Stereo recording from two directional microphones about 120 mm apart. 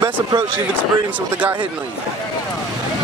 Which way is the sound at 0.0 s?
35° right (ahead or behind).